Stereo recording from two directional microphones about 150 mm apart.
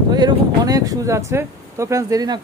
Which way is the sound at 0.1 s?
25° right (ahead or behind).